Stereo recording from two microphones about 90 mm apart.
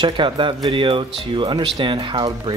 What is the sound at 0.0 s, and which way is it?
Speech, 65° right (ahead or behind).